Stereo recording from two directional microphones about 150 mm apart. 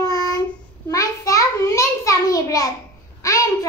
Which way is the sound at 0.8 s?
20° left (ahead or behind).